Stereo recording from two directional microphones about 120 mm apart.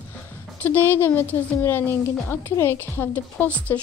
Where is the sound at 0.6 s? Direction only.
15° left (ahead or behind).